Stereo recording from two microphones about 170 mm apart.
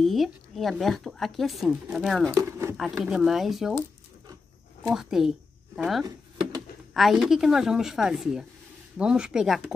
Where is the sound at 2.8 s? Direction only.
Centre (ahead or behind).